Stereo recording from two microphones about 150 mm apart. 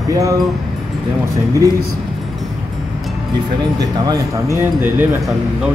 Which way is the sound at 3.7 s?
25° right (ahead or behind).